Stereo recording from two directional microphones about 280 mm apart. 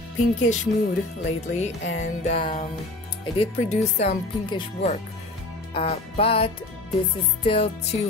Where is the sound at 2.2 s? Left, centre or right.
Left.